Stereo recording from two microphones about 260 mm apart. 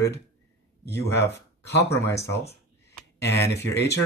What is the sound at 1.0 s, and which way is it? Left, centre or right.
Speech, left.